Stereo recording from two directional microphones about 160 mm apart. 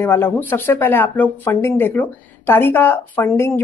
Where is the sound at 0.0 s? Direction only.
15° left (ahead or behind).